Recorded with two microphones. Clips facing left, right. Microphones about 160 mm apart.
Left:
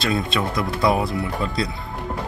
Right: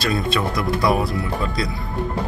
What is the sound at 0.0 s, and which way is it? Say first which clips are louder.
Speech: right 1 dB; 20° left (ahead or behind).